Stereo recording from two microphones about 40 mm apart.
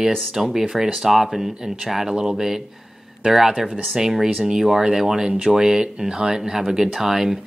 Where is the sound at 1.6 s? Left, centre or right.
Centre.